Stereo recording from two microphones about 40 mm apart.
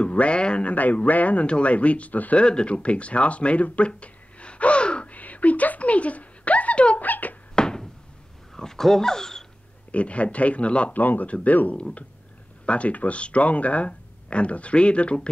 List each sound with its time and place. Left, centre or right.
0.0 s speech: left
0.7 s speech: left
2.3 s speech: left
5.1 s a sound: left
7.0 s a sound: left
7.5 s a sound: centre
8.5 s speech: centre
9.9 s speech: left
10.9 s speech: left
11.2 s speech: left